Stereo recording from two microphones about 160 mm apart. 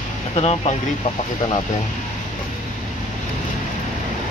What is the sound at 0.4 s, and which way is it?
Speech, 45° left (ahead or behind).